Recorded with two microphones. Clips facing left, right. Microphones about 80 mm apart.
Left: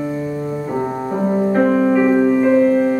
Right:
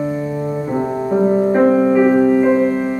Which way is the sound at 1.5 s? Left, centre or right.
Centre.